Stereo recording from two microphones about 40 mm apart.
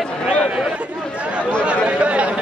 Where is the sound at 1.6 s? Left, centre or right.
Right.